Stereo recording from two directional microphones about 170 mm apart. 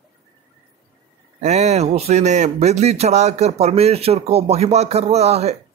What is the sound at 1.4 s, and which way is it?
Speech, 40° right (ahead or behind).